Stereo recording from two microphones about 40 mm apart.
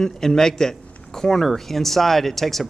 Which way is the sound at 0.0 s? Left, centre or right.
Centre.